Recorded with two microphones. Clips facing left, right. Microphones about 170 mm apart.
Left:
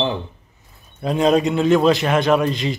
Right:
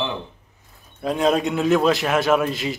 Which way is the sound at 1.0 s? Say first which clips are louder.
Left 3 dB; centre (ahead or behind).